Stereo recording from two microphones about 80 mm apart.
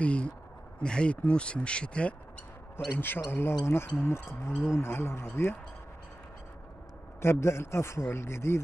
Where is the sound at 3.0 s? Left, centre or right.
Left.